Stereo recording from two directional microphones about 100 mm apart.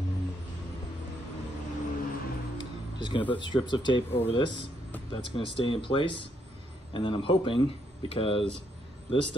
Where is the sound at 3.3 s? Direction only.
55° left (ahead or behind).